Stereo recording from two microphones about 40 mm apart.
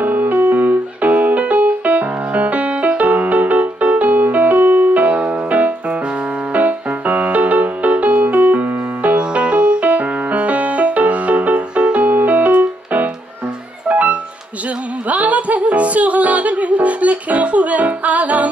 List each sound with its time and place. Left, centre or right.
0.0 s music: right
8.4 s music: right
9.1 s music: right